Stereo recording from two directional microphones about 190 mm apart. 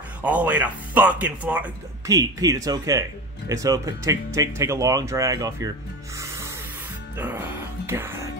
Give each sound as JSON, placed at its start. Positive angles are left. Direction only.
{"t": 0.2, "sound": "speech", "side_deg": -10}
{"t": 6.1, "sound": "music", "side_deg": -15}
{"t": 7.2, "sound": "speech", "side_deg": -10}